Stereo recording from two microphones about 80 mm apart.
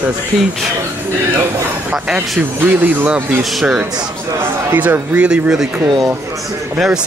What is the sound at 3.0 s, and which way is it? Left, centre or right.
Speech, centre.